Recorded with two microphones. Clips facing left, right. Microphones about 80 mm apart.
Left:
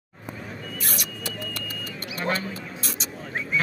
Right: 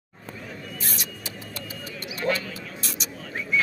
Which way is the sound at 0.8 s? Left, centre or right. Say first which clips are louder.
Left 3 dB; left.